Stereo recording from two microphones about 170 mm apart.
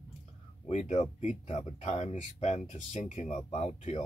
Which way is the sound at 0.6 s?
40° left (ahead or behind).